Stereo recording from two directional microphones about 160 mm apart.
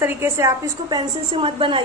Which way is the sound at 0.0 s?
15° right (ahead or behind).